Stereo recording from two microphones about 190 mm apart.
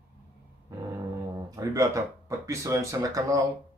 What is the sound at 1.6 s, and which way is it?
Speech, 15° right (ahead or behind).